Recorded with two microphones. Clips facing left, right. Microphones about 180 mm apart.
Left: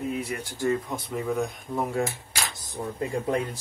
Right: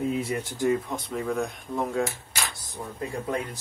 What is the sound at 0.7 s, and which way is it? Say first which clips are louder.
Speech: right 1 dB; 5° left (ahead or behind).